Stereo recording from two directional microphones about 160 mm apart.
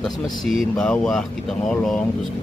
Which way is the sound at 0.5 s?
Centre (ahead or behind).